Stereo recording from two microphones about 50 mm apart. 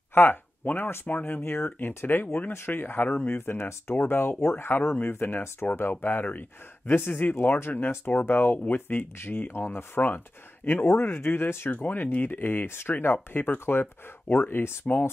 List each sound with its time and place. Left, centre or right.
0.1 s speech: left
4.4 s speech: left
4.6 s speech: left
11.1 s speech: left
11.7 s speech: left
13.1 s speech: left